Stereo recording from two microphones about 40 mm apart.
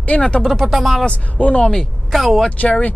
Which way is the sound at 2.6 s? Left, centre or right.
Left.